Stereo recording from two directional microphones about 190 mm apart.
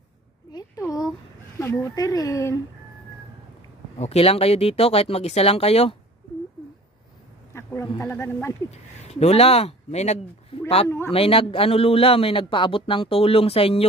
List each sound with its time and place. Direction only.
0.5 s speech: 20° left (ahead or behind)
4.0 s speech: 35° left (ahead or behind)
7.5 s speech: 15° left (ahead or behind)
8.7 s a man's voice: 35° left (ahead or behind)